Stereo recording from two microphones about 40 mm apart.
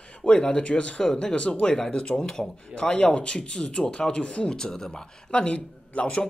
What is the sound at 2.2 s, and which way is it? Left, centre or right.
Speech, centre.